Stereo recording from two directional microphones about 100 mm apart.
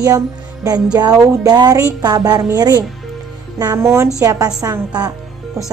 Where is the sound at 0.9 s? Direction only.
45° right (ahead or behind).